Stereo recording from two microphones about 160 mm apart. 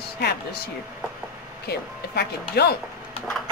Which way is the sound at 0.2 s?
90° left.